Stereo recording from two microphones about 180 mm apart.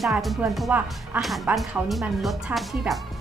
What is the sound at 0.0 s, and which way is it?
A woman's voice, centre (ahead or behind).